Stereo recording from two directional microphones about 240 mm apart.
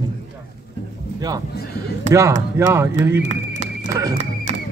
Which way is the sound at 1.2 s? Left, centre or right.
Centre.